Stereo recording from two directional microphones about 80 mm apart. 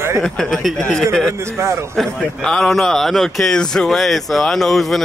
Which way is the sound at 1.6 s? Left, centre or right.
Right.